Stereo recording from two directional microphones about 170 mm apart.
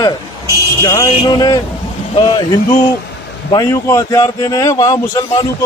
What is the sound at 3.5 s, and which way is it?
A man's voice, 20° left (ahead or behind).